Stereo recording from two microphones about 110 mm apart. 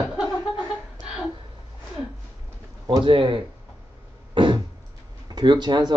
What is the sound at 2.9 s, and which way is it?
Speech, 50° right (ahead or behind).